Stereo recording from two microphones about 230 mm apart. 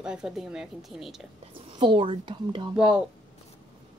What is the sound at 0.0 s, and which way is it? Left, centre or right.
A woman's voice, centre.